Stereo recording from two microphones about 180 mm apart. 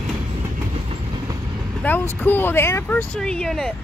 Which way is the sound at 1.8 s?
10° left (ahead or behind).